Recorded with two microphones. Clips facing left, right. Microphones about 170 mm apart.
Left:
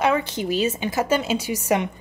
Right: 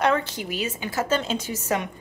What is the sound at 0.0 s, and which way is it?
Speech, 10° left (ahead or behind).